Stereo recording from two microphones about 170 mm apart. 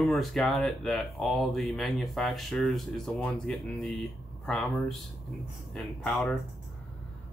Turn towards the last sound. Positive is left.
turn(degrees=0)  # may be behind; listen again after turning